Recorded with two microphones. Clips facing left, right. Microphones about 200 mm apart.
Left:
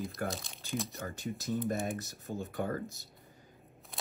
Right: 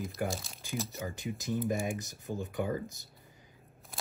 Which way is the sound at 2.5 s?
10° right (ahead or behind).